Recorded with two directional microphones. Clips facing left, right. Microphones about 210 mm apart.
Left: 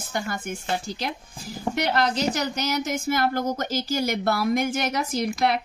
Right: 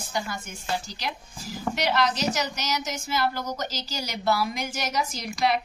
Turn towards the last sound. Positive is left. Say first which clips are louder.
# left 3 dB
turn(degrees=55)  # may be behind; listen again after turning